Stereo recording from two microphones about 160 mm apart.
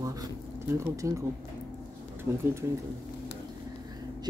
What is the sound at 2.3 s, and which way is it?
Speech, 15° right (ahead or behind).